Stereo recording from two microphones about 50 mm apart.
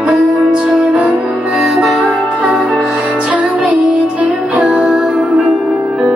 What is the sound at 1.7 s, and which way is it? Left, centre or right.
Music, centre.